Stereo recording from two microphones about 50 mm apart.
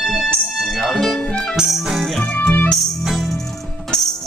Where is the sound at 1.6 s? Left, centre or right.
Centre.